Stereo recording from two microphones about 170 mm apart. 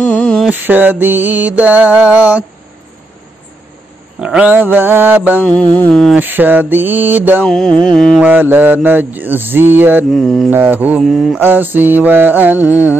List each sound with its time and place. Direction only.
0.0 s mantra: 5° left (ahead or behind)
0.5 s mantra: 10° right (ahead or behind)
4.2 s mantra: 5° right (ahead or behind)
5.4 s mantra: 10° left (ahead or behind)
6.1 s mantra: 10° right (ahead or behind)
7.4 s mantra: 5° left (ahead or behind)
8.2 s mantra: 10° right (ahead or behind)